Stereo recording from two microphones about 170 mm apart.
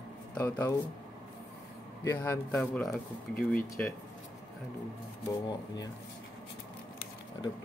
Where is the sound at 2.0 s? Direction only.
10° left (ahead or behind).